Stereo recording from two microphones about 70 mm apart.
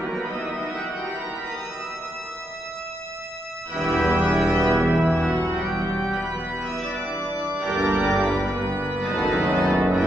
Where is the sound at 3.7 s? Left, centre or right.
Centre.